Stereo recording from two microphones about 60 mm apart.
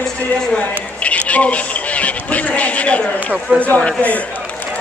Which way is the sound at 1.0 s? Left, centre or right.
Left.